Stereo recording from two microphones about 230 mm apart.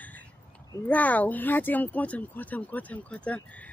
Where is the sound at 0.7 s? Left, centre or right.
Centre.